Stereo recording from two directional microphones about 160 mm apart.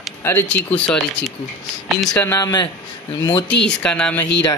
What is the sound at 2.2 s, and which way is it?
Speech, 20° left (ahead or behind).